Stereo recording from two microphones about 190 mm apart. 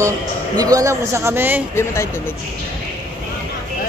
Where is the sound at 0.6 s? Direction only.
20° right (ahead or behind).